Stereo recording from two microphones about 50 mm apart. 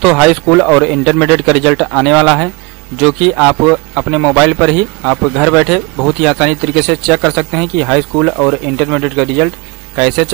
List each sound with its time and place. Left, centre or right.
0.0 s speech: centre